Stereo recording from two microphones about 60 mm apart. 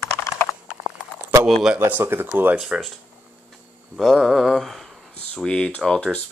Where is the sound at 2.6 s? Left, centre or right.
Centre.